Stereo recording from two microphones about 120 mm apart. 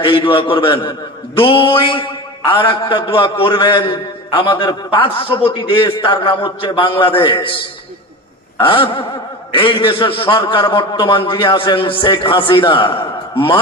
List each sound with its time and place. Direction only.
0.0 s a man's voice: 45° left (ahead or behind)